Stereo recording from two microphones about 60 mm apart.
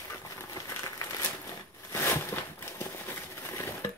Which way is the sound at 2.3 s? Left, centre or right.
Left.